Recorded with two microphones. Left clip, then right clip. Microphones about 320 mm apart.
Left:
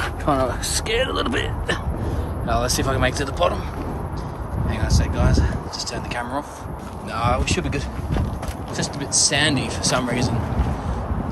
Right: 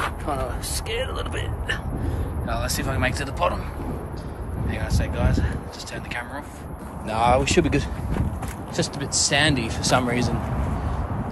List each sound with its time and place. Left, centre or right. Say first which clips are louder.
0.2 s a sound: left 7 dB; left
2.4 s speech: left 6 dB; centre
4.6 s speech: left 3 dB; centre
7.1 s speech: right 3 dB; centre
8.7 s speech: left 2 dB; centre